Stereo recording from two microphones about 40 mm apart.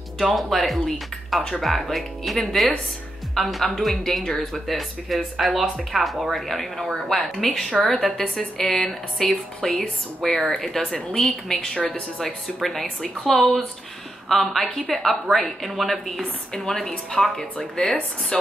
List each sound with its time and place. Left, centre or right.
0.2 s speech: centre
4.7 s a woman's voice: centre; by 11.9 s left
12.5 s speech: centre
16.2 s a woman's voice: centre